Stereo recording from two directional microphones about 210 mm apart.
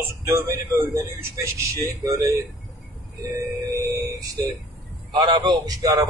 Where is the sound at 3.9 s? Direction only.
15° right (ahead or behind).